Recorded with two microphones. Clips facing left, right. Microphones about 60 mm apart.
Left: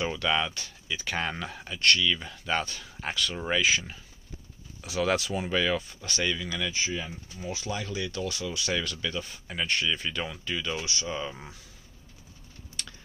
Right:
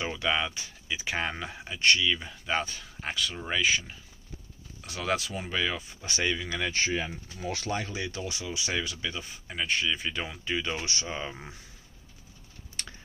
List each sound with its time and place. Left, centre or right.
0.0 s speech: centre
5.9 s speech: right
6.7 s speech: right
7.3 s speech: right
7.6 s speech: right; by 10.1 s centre
10.1 s speech: centre